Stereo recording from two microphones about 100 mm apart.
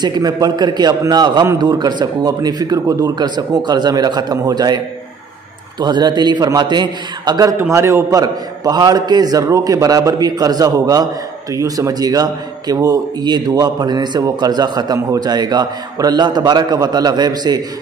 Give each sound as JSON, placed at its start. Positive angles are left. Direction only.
{"t": 0.0, "sound": "a man's voice", "side_deg": -45}
{"t": 7.7, "sound": "a man's voice", "side_deg": -30}